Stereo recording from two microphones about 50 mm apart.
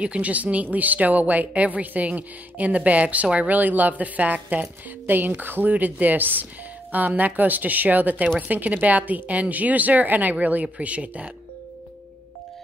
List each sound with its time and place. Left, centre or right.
0.0 s a woman's voice: right